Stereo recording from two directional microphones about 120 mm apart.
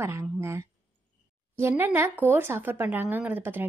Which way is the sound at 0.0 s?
20° right (ahead or behind).